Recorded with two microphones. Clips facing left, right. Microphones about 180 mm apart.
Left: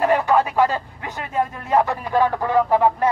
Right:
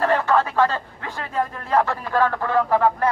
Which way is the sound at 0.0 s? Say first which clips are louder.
Left 2 dB; 15° left (ahead or behind).